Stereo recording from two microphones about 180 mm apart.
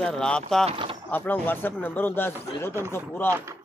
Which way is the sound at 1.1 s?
10° left (ahead or behind).